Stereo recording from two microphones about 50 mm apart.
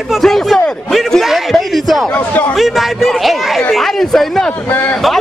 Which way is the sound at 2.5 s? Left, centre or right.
Centre.